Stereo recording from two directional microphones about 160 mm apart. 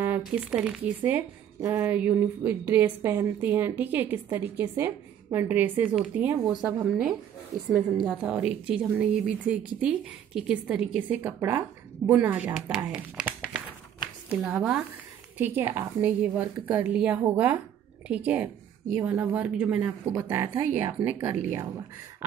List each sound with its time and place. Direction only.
0.0 s a woman's voice: 10° right (ahead or behind)
14.3 s speech: 10° right (ahead or behind)
20.1 s speech: 20° right (ahead or behind)